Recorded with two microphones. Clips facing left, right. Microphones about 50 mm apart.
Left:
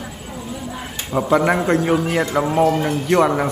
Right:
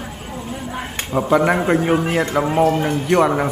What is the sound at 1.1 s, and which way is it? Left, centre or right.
Speech, centre.